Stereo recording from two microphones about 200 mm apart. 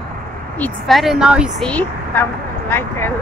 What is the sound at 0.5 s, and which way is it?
Speech, 5° left (ahead or behind).